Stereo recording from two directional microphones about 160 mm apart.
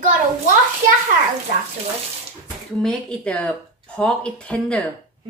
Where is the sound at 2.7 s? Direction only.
5° left (ahead or behind).